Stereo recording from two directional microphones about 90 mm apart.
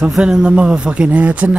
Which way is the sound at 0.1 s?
10° right (ahead or behind).